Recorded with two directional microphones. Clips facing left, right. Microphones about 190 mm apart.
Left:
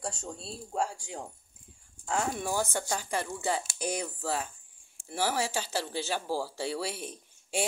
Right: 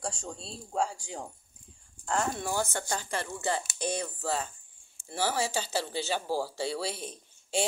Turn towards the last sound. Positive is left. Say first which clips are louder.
# right 2 dB
turn(degrees=10)  # may be behind; listen again after turning